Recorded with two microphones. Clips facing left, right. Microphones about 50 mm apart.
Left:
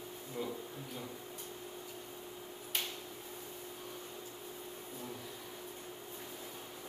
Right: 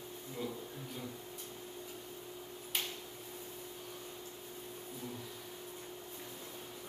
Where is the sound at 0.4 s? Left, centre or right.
Centre.